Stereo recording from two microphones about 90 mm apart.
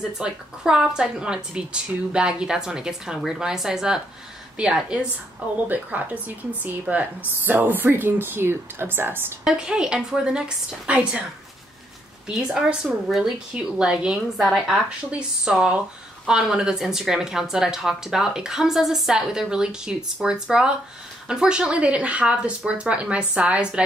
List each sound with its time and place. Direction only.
0.2 s a woman's voice: 10° right (ahead or behind); by 9.2 s 25° right (ahead or behind)
9.4 s a woman's voice: 5° right (ahead or behind)
12.3 s a woman's voice: 5° right (ahead or behind)
15.0 s a woman's voice: 10° right (ahead or behind)